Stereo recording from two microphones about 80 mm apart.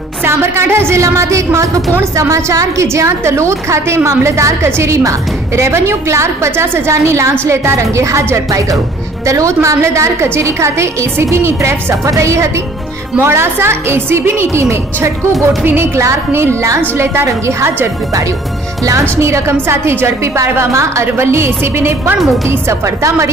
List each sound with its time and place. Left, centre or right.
0.2 s a woman's voice: right